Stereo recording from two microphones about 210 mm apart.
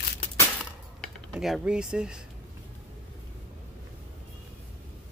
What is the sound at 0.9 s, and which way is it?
Speech, centre (ahead or behind).